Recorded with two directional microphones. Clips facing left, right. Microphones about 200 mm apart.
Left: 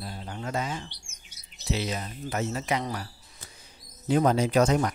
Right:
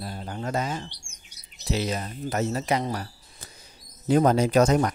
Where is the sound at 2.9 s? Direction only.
40° right (ahead or behind).